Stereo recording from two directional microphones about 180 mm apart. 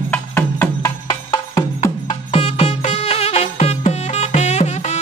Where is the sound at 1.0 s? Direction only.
20° left (ahead or behind).